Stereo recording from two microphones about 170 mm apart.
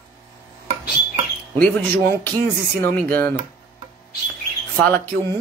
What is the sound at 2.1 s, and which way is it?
Speech, 60° right (ahead or behind).